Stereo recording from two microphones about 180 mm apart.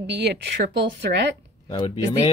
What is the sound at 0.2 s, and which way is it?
Speech, 70° right (ahead or behind).